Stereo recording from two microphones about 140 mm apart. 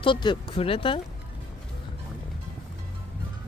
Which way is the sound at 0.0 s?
35° left (ahead or behind).